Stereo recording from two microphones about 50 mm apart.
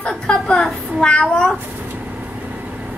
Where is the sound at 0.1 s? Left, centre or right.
Centre.